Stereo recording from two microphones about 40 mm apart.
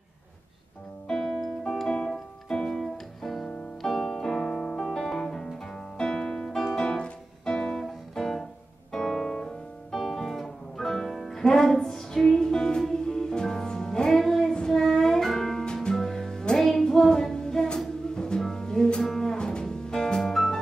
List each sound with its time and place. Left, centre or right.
1.0 s music: centre
1.4 s music: centre
1.9 s music: centre
3.4 s piano: centre
5.9 s music: centre
7.8 s music: centre
9.9 s music: centre
15.6 s music: left
19.0 s double bass: centre
19.3 s music: centre